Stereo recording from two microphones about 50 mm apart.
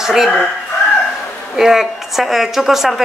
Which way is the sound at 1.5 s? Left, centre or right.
Centre.